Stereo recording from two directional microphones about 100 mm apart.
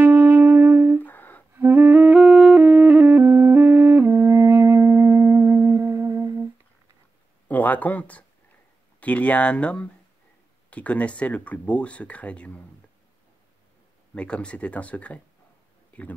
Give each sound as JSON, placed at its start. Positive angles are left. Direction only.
{"t": 0.0, "sound": "music", "side_deg": -20}
{"t": 1.0, "sound": "humming", "side_deg": 20}
{"t": 1.5, "sound": "music", "side_deg": -20}
{"t": 2.1, "sound": "music", "side_deg": -5}
{"t": 2.6, "sound": "music", "side_deg": -15}
{"t": 4.1, "sound": "wind instrument", "side_deg": -30}
{"t": 7.4, "sound": "a sound", "side_deg": 15}
{"t": 9.0, "sound": "speech", "side_deg": 15}
{"t": 14.1, "sound": "speech", "side_deg": 10}